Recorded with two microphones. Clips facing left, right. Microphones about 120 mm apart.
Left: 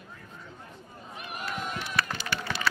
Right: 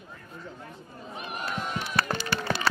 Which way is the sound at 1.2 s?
30° right (ahead or behind).